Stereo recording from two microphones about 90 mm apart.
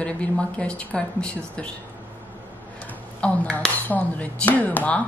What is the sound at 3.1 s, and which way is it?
A woman's voice, 15° left (ahead or behind).